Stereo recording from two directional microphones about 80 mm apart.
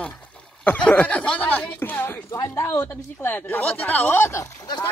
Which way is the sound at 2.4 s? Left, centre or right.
Left.